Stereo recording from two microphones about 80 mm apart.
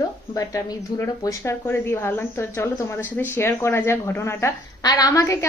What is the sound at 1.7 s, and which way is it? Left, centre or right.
Speech, left.